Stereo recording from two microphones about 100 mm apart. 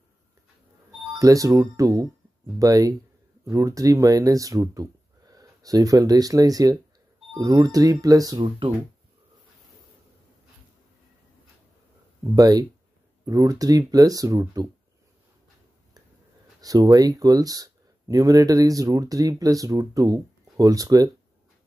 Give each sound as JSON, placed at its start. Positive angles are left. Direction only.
{"t": 1.2, "sound": "speech", "side_deg": -35}
{"t": 8.4, "sound": "speech", "side_deg": -55}
{"t": 12.4, "sound": "speech", "side_deg": -40}
{"t": 16.6, "sound": "speech", "side_deg": -40}